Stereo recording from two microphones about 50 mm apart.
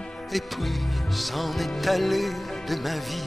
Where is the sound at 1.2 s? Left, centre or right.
Centre.